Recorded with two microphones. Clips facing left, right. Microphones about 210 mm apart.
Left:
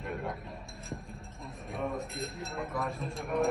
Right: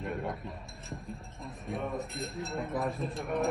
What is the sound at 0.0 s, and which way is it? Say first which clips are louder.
Speech: right 2 dB; centre (ahead or behind).